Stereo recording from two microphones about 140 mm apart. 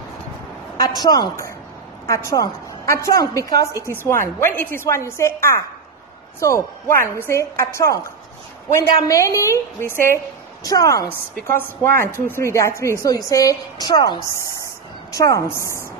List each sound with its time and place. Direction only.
0.7 s a woman's voice: 30° left (ahead or behind)